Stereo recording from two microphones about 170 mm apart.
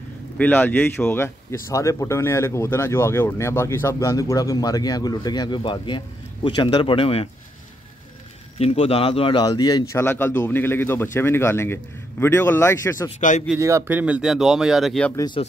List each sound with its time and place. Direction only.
0.4 s speech: 10° left (ahead or behind); by 7.2 s 35° left (ahead or behind)
8.5 s speech: 35° left (ahead or behind)
10.0 s speech: 15° left (ahead or behind)
13.6 s speech: 15° right (ahead or behind); by 15.1 s centre (ahead or behind)
15.1 s speech: 25° left (ahead or behind)